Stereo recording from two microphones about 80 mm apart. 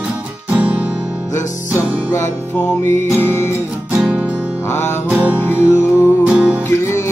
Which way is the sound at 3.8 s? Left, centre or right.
Centre.